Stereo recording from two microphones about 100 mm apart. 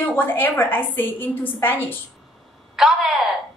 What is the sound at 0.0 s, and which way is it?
A woman's voice, 20° left (ahead or behind).